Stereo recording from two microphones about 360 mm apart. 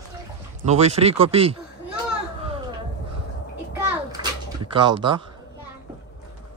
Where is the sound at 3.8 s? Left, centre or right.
Centre.